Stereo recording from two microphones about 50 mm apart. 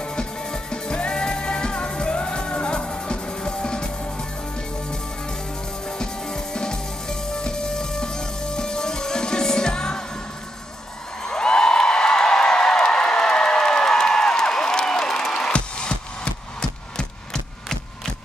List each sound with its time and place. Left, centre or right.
0.0 s music: centre
5.9 s music: centre
11.2 s a sound: centre